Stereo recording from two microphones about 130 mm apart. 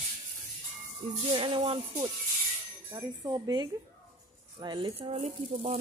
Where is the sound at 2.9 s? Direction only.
25° right (ahead or behind).